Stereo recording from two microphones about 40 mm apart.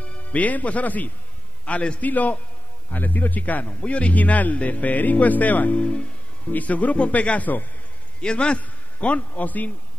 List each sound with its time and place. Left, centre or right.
0.0 s a man's voice: left
3.6 s speech: left
5.8 s music: left
6.5 s speech: left
8.2 s a man's voice: left